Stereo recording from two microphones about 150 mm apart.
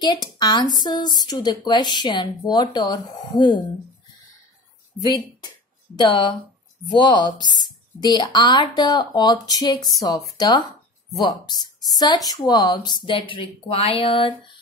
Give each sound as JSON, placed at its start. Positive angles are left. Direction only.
{"t": 0.0, "sound": "speech", "side_deg": 30}
{"t": 5.9, "sound": "speech", "side_deg": 30}